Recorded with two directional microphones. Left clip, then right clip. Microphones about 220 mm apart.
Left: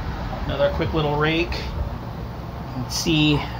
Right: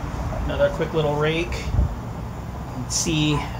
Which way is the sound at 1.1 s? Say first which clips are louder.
Left 1 dB; 20° left (ahead or behind).